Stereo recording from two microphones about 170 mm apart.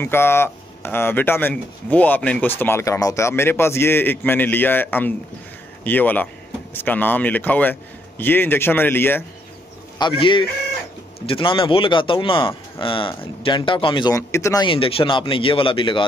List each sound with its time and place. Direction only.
0.0 s speech: 15° left (ahead or behind)
9.9 s speech: 30° left (ahead or behind)